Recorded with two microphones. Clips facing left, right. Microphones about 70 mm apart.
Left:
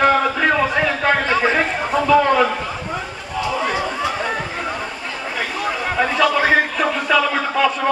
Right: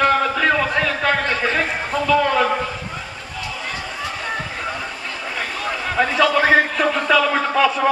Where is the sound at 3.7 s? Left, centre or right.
Left.